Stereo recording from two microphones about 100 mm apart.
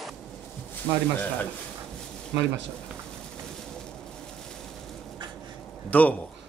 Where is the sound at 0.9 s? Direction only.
40° right (ahead or behind).